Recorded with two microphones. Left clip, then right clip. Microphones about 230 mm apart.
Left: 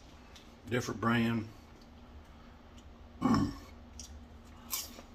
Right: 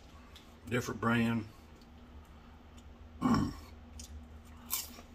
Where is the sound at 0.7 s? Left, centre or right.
Centre.